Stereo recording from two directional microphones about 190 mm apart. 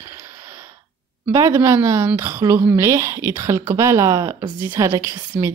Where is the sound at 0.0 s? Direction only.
15° right (ahead or behind).